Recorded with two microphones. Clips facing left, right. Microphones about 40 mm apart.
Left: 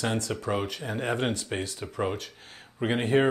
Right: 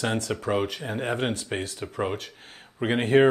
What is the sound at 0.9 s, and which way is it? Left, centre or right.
Speech, right.